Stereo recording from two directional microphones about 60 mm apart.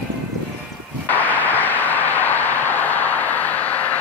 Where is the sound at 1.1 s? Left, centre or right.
Left.